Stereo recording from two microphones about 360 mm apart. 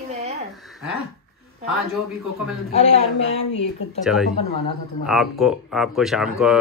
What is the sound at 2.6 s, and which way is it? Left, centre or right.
Speech, centre.